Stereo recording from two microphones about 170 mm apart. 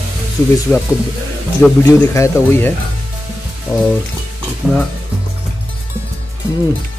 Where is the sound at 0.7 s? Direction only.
10° left (ahead or behind).